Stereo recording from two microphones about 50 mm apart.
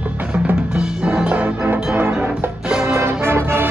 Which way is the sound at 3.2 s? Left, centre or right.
Right.